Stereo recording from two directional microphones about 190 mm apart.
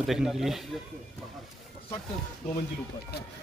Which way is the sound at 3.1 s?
60° left (ahead or behind).